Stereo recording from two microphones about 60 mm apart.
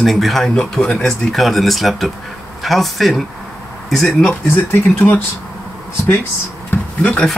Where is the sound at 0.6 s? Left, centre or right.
Centre.